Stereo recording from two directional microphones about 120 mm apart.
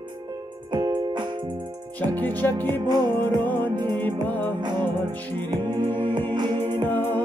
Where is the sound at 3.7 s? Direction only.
40° right (ahead or behind).